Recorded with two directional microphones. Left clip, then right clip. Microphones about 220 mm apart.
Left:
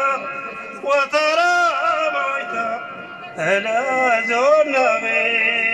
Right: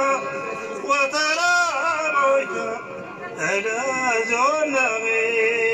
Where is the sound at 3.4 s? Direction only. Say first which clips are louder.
Left 4 dB; 50° left (ahead or behind).